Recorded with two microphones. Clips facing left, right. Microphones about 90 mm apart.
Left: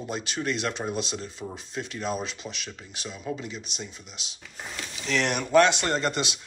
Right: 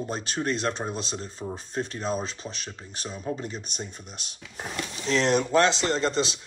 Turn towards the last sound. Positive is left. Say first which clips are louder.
# right 2 dB
turn(degrees=-30)  # may be behind; listen again after turning